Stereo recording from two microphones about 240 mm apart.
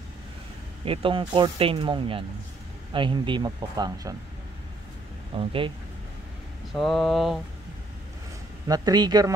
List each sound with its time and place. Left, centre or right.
0.8 s speech: right
5.3 s speech: right
6.7 s a sound: centre
8.6 s speech: centre